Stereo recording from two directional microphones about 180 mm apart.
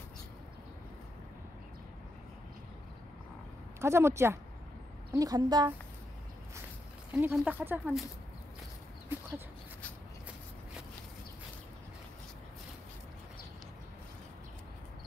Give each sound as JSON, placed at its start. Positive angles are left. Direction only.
{"t": 3.8, "sound": "a woman's voice", "side_deg": -15}
{"t": 7.1, "sound": "speech", "side_deg": -10}